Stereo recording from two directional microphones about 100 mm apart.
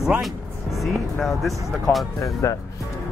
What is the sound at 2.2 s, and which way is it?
Speech, 30° left (ahead or behind).